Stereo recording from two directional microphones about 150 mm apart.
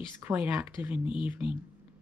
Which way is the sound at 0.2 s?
10° right (ahead or behind).